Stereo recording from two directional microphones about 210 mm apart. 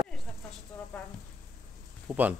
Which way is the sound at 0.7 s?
5° left (ahead or behind).